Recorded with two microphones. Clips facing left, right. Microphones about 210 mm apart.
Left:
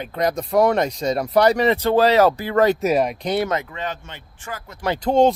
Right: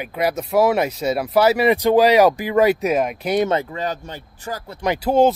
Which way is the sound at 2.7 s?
Centre (ahead or behind).